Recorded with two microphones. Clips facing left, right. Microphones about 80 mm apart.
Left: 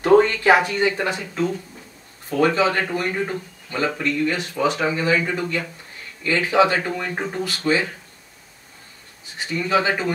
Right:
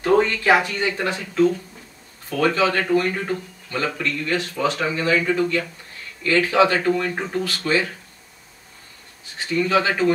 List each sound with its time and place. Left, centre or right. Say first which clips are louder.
0.0 s speech: left 3 dB; left
9.4 s speech: right 1 dB; centre